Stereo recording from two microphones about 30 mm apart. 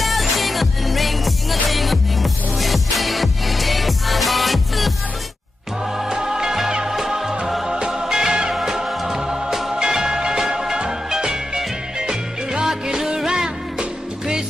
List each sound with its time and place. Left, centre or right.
0.0 s music: centre
5.9 s music: centre
13.3 s music: right